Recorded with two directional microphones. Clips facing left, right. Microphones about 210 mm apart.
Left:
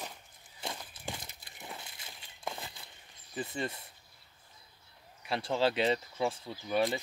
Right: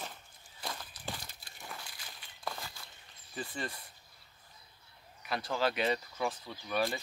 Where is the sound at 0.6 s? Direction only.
25° left (ahead or behind).